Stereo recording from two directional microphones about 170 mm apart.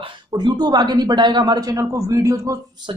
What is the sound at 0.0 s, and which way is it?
Speech, 25° right (ahead or behind).